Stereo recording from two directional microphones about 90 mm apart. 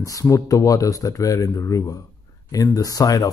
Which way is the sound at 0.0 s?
40° left (ahead or behind).